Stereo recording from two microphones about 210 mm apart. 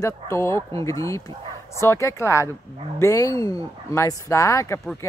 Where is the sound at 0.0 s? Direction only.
10° left (ahead or behind).